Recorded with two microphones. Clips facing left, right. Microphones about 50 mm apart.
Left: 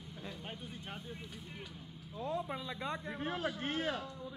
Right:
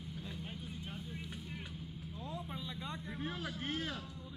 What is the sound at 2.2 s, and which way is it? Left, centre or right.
Speech, left.